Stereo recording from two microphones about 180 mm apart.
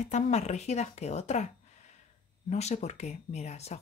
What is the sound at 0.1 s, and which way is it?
Speech, 40° left (ahead or behind).